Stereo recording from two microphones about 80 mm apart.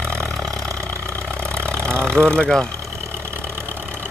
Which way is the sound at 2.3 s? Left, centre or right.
Centre.